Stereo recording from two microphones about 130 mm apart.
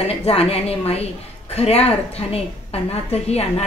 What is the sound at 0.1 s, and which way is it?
A woman's voice, 50° left (ahead or behind).